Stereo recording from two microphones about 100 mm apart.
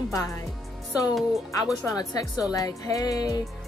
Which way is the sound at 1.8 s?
40° left (ahead or behind).